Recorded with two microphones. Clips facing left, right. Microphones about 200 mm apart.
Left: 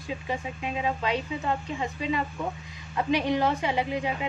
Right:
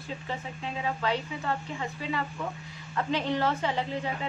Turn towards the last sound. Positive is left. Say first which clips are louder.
# left 3 dB
turn(degrees=15)  # may be behind; listen again after turning